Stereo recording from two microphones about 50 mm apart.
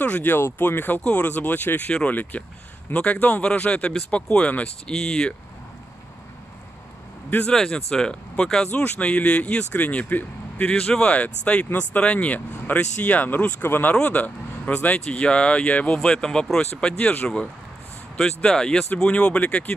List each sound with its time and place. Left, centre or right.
0.0 s speech: left
1.9 s speech: left
7.5 s speech: centre
8.8 s speech: left
10.7 s speech: left
13.6 s speech: left
13.9 s speech: left
18.1 s speech: centre
18.9 s speech: centre